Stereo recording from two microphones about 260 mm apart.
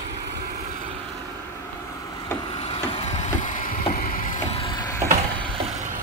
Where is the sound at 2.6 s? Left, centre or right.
Left.